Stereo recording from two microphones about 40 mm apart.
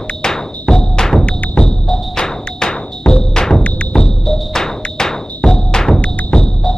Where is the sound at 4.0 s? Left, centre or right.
Centre.